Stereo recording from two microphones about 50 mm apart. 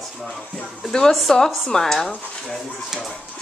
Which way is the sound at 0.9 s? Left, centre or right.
Centre.